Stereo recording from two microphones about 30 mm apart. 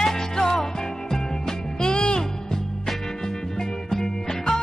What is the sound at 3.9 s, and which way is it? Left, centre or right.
Music, centre.